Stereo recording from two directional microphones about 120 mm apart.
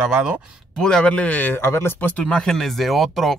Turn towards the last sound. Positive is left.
turn(degrees=0)  # may be behind; listen again after turning